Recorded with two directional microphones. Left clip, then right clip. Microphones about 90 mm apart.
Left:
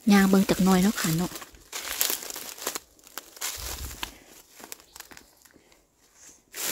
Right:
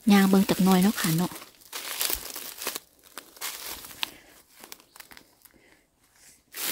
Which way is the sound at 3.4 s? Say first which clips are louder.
Left 2 dB; 5° left (ahead or behind).